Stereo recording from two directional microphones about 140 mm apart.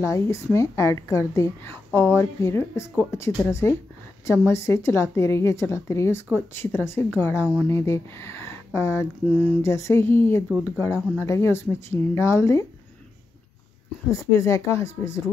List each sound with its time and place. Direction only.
0.0 s speech: 20° left (ahead or behind)
14.0 s speech: 20° left (ahead or behind)